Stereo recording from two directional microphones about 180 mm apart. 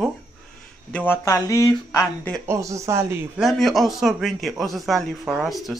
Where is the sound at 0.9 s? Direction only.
10° left (ahead or behind).